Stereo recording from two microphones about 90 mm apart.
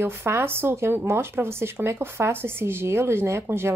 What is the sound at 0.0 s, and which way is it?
Speech, 25° right (ahead or behind).